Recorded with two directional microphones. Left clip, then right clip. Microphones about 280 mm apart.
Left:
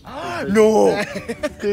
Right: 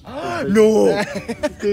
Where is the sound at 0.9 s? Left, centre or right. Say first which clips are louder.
Right 1 dB; right.